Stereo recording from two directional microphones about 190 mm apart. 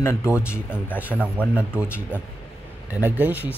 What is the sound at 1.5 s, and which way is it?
Speech, 5° right (ahead or behind).